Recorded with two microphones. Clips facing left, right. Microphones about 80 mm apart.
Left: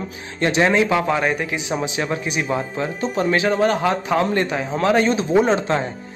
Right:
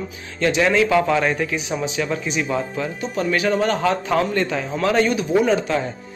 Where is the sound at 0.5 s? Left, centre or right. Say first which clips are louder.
Even; left.